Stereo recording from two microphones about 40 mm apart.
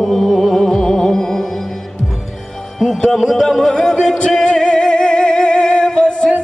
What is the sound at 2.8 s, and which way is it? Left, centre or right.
Music, centre.